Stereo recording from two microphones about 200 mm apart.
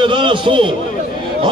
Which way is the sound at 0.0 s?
25° right (ahead or behind).